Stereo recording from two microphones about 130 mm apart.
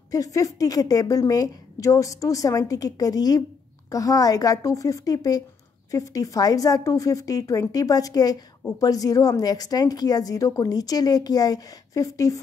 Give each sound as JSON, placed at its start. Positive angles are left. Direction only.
{"t": 0.1, "sound": "a woman's voice", "side_deg": 25}